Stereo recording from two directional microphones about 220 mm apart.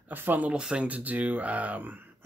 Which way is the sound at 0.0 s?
10° right (ahead or behind).